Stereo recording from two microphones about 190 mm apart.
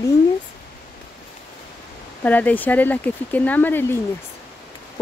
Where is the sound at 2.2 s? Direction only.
10° left (ahead or behind).